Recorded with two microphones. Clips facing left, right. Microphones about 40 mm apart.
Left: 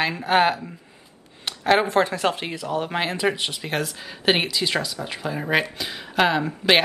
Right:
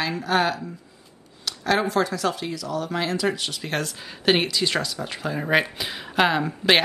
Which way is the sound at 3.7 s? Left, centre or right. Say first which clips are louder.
Right 1 dB; centre.